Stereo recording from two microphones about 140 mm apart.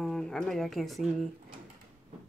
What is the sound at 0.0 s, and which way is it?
Speech, 5° left (ahead or behind).